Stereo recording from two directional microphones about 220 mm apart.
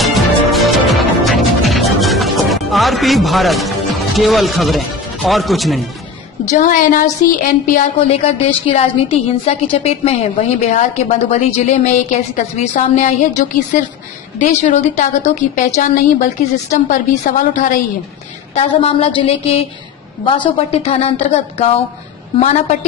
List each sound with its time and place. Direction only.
0.0 s music: centre (ahead or behind)
6.4 s a woman's voice: 35° left (ahead or behind)